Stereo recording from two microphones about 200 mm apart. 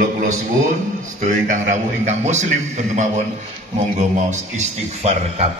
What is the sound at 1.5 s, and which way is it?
A man's voice, 35° right (ahead or behind).